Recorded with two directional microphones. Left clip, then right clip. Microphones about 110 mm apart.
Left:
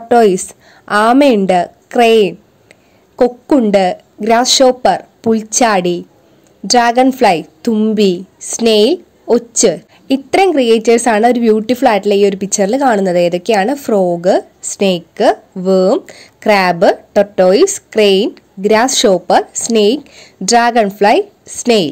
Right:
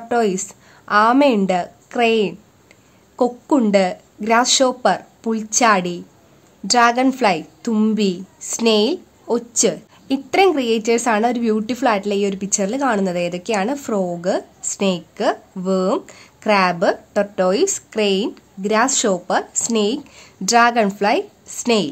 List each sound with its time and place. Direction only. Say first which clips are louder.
0.1 s a woman's voice: left 10 dB; 45° left (ahead or behind)